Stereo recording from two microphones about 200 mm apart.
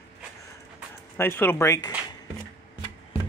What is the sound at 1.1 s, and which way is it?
Speech, 10° left (ahead or behind).